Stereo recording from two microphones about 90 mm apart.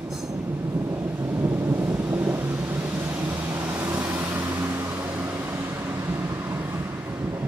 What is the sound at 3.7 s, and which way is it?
Vehicle, 20° right (ahead or behind).